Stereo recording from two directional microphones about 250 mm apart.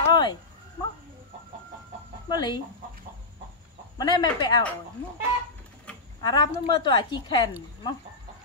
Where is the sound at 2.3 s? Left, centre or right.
Centre.